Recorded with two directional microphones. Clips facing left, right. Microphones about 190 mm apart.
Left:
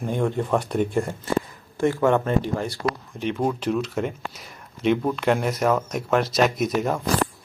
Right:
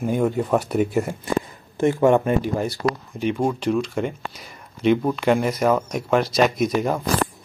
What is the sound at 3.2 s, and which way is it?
Speech, centre (ahead or behind).